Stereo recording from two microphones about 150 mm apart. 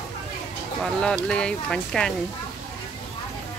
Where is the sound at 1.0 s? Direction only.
5° left (ahead or behind).